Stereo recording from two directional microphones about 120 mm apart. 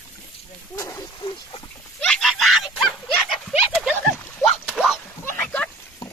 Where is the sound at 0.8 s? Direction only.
25° left (ahead or behind).